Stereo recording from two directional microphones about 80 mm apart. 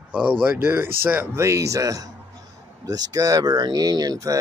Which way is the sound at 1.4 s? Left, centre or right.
Right.